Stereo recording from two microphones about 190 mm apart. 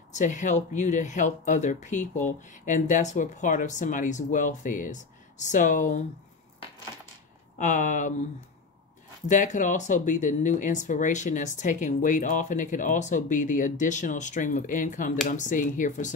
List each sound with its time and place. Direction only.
0.1 s speech: 40° left (ahead or behind)
7.5 s speech: 40° left (ahead or behind)
9.3 s speech: 40° left (ahead or behind)